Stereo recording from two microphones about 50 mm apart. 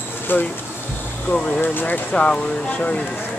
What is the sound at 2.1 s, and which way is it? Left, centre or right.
Speech, left.